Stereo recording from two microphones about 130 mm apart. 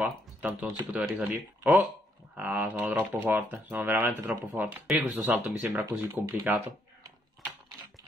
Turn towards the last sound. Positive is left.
turn(degrees=0)  # may be behind; listen again after turning